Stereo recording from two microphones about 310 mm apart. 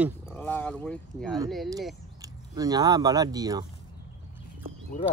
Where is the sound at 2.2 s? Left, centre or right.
Centre.